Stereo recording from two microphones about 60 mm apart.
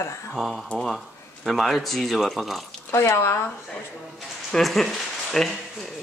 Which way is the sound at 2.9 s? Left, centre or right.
Left.